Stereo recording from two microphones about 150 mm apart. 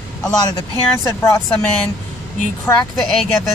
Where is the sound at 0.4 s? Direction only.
25° left (ahead or behind).